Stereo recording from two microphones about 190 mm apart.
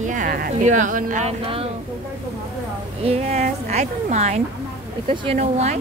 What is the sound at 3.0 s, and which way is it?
Speech, 35° right (ahead or behind).